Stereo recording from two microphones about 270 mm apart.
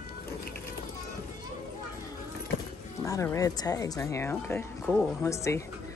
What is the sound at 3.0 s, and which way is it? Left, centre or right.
Speech, centre.